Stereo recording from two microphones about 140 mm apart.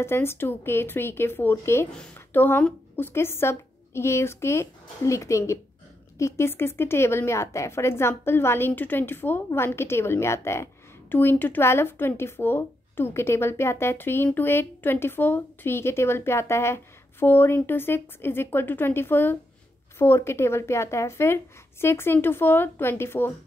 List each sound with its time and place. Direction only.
0.0 s a woman's voice: 15° left (ahead or behind)